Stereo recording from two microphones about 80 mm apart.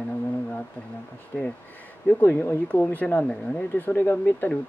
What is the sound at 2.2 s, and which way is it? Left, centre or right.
A man's voice, left.